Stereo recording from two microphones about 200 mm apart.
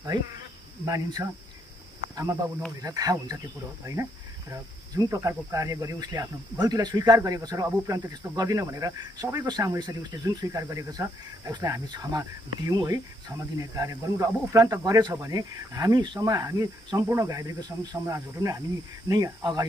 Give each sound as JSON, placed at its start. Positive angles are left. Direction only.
{"t": 0.8, "sound": "speech", "side_deg": -15}
{"t": 2.8, "sound": "speech", "side_deg": -20}